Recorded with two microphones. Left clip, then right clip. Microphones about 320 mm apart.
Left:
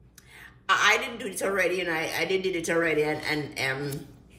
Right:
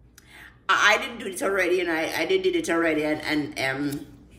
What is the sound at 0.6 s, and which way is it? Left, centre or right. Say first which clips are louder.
A man's voice: right 2 dB; centre.